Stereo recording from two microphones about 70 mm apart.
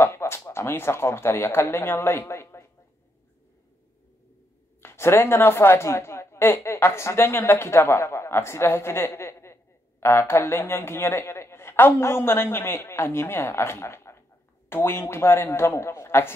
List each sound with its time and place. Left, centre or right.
0.0 s a sound: left
0.5 s speech: left
4.8 s a woman's voice: left